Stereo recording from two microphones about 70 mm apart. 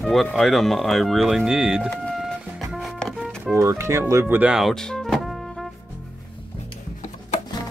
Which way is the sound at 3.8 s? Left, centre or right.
Right.